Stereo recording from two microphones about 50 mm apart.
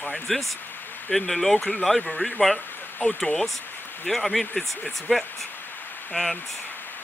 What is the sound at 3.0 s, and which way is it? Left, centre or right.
Speech, left.